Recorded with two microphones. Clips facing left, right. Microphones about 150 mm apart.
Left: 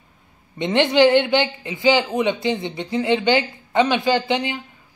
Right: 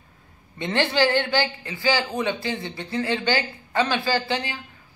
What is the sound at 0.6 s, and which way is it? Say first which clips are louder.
A man's voice: left 6 dB; 20° left (ahead or behind).